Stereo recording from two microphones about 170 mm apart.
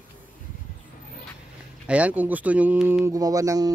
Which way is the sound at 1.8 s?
10° right (ahead or behind).